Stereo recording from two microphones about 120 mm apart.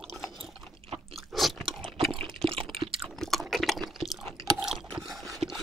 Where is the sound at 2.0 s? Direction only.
45° right (ahead or behind).